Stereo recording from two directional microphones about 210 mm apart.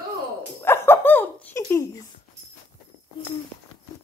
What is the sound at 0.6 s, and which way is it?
Dog, 10° left (ahead or behind).